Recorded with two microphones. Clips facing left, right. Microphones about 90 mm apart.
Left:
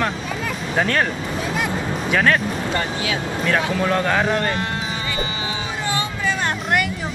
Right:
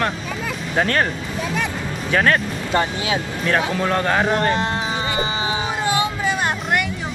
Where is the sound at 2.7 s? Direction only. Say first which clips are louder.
Right 8 dB; 25° right (ahead or behind).